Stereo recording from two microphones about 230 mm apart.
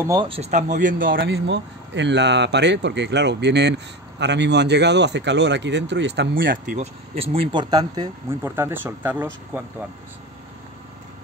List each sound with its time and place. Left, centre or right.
0.0 s a man's voice: centre; by 1.2 s right
1.2 s speech: right
7.2 s speech: right